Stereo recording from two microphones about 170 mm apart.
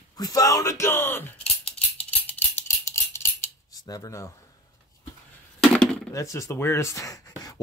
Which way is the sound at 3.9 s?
20° left (ahead or behind).